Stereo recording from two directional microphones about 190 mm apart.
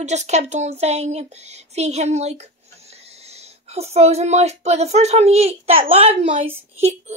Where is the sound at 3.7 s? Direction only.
35° right (ahead or behind).